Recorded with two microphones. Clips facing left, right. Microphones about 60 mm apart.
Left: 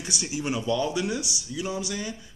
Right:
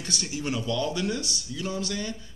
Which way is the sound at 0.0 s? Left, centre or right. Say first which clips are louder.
Left 1 dB; centre.